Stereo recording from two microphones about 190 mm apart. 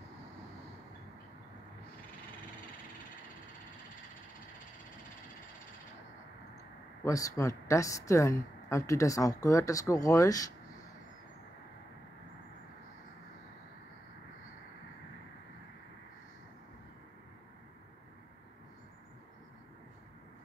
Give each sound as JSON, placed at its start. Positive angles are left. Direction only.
{"t": 7.1, "sound": "a woman's voice", "side_deg": 15}